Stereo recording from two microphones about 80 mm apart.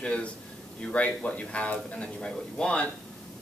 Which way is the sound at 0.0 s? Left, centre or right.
Centre.